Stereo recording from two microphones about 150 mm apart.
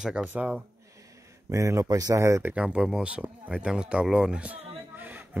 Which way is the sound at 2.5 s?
5° right (ahead or behind).